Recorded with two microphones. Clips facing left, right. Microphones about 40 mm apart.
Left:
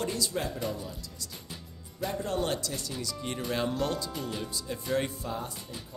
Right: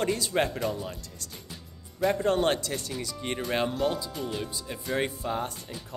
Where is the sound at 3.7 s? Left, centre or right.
Centre.